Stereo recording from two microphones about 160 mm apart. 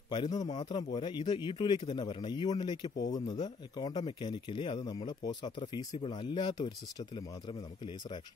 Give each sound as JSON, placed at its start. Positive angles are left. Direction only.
{"t": 0.1, "sound": "a man's voice", "side_deg": 25}